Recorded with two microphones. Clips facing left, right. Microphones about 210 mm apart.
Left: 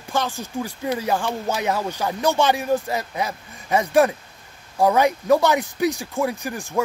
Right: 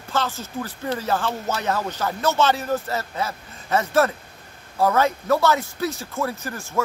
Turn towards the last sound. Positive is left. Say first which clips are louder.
# left 3 dB
turn(degrees=15)  # may be behind; listen again after turning